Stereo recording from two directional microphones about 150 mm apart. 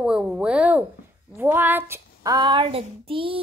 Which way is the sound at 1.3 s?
15° right (ahead or behind).